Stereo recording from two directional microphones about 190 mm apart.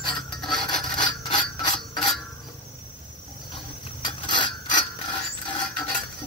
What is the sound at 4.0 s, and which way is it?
Mechanisms, 25° left (ahead or behind).